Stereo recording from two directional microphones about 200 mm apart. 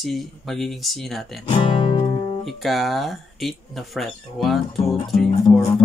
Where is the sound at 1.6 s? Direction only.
25° left (ahead or behind).